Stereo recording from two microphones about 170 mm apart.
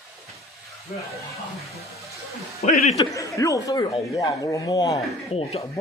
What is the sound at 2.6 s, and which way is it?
Speech, 40° left (ahead or behind).